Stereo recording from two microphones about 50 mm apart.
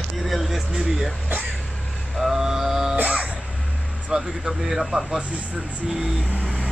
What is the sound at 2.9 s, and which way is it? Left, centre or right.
Music, right.